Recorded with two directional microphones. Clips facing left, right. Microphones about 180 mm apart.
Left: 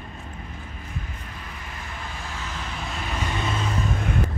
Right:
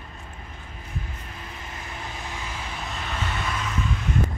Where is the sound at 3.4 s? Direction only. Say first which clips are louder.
Left 3 dB; 30° left (ahead or behind).